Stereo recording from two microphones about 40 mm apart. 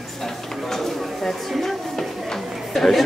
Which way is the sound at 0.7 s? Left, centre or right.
Centre.